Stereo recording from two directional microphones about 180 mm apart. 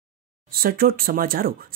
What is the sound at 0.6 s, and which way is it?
Speech, 55° right (ahead or behind).